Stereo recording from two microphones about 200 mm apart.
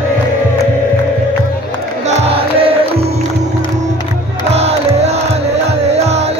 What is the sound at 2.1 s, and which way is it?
Music, 30° right (ahead or behind).